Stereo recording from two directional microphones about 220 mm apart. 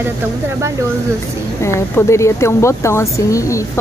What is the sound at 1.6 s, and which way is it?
Speech, 15° left (ahead or behind).